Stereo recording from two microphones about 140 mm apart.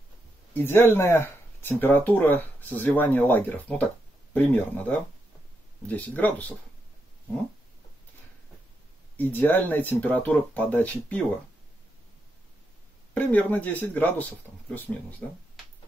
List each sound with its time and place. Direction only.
0.6 s speech: 15° left (ahead or behind)
9.1 s speech: 10° left (ahead or behind)
13.1 s speech: 10° left (ahead or behind)